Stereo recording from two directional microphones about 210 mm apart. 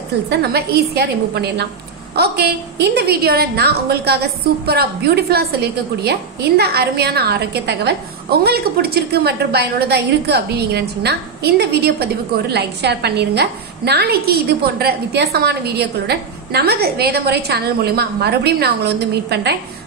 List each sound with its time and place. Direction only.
0.3 s a woman's voice: 50° right (ahead or behind)